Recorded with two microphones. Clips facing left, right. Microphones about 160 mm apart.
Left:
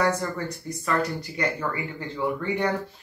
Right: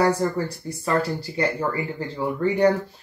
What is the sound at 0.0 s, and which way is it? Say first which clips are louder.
Speech: right 4 dB; 30° right (ahead or behind).